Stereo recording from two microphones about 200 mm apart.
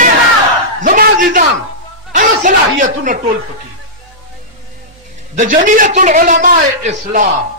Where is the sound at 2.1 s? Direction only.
40° right (ahead or behind).